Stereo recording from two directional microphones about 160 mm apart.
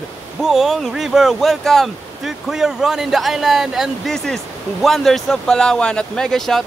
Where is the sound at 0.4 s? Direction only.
Centre (ahead or behind).